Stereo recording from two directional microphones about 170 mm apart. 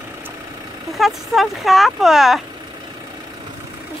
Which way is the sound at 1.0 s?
Centre (ahead or behind).